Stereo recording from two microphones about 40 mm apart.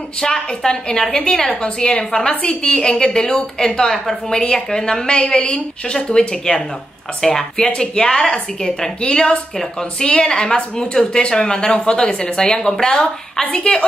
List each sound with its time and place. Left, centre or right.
0.2 s a woman's voice: centre
9.1 s a woman's voice: centre
13.7 s a woman's voice: left